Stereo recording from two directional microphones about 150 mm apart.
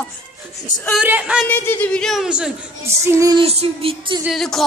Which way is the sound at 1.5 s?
10° left (ahead or behind).